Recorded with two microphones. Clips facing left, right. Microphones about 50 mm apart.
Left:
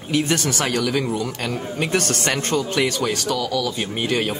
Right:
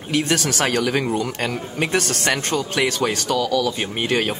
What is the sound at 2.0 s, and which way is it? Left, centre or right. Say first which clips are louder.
Speech: right 1 dB; centre.